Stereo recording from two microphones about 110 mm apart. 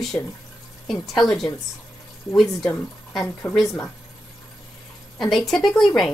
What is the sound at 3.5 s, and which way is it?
Speech, 20° left (ahead or behind).